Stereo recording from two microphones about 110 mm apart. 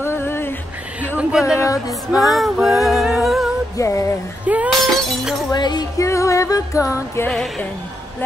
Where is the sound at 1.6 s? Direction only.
30° left (ahead or behind).